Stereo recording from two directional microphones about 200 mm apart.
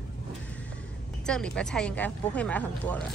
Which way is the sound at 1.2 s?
5° left (ahead or behind).